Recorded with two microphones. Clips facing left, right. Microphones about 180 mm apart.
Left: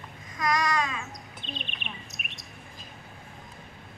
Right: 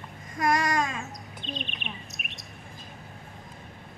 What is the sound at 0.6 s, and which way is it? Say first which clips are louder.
Speech: right 1 dB; 50° right (ahead or behind).